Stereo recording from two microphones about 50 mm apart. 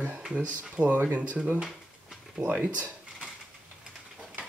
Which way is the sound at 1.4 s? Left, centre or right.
Centre.